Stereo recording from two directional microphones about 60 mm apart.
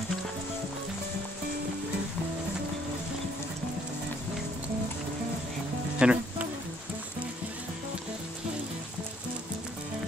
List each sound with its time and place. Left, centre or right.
6.0 s speech: centre